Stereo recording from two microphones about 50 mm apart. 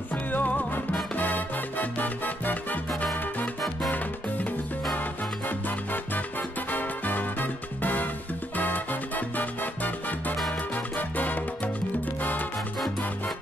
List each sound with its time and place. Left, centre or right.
0.1 s music: left
1.1 s salsa music: left
5.5 s music: left